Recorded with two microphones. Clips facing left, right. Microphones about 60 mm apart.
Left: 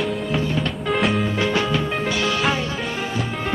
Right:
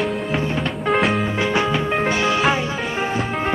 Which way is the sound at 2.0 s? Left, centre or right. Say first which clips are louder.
Right 3 dB; right.